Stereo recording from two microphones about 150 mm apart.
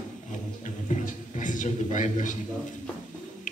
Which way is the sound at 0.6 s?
55° left (ahead or behind).